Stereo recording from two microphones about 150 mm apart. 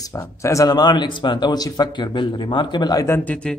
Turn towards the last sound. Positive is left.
turn(degrees=10)  # may be behind; listen again after turning